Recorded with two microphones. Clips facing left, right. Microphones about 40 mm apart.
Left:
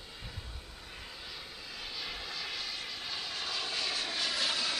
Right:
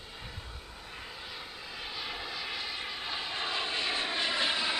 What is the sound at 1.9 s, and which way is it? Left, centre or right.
Vehicle, centre.